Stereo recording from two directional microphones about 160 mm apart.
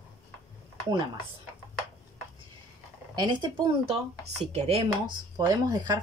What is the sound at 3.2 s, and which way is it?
Speech, 30° right (ahead or behind).